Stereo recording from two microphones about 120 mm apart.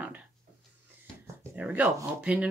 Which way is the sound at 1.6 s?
10° right (ahead or behind).